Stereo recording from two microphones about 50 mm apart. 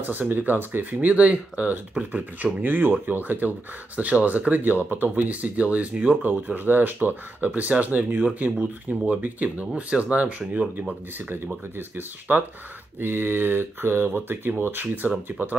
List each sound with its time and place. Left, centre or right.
0.1 s speech: right
0.9 s speech: right
8.5 s speech: right
10.8 s speech: right
13.0 s speech: right